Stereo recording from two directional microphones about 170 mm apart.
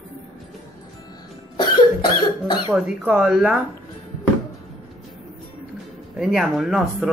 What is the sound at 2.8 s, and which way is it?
Speech, 5° right (ahead or behind).